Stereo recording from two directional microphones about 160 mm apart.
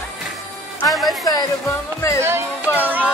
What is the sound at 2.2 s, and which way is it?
Music, 15° right (ahead or behind).